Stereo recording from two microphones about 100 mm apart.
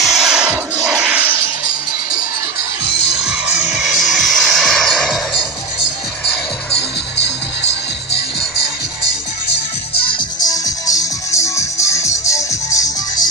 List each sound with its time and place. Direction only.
0.0 s music: 5° right (ahead or behind)
3.3 s music: 5° right (ahead or behind)
9.9 s music: 60° left (ahead or behind)
10.4 s music: 35° left (ahead or behind)